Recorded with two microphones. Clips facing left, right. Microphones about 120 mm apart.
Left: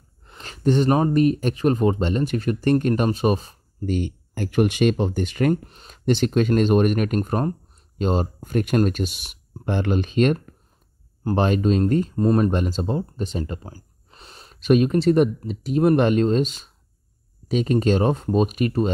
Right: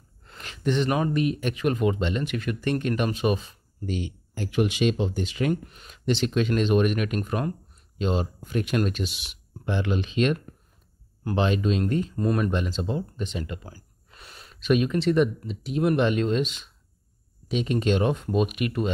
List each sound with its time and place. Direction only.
0.4 s speech: 40° left (ahead or behind)
5.7 s speech: 30° left (ahead or behind)
6.0 s speech: 45° left (ahead or behind)